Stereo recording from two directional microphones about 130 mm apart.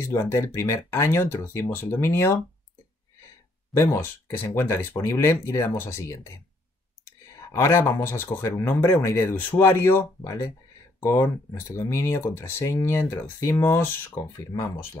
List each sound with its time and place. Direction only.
0.0 s speech: 20° left (ahead or behind)
3.7 s speech: 20° left (ahead or behind)
7.3 s speech: 20° left (ahead or behind)